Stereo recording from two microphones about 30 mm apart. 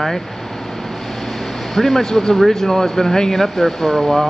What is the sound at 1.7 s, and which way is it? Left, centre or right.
Speech, centre.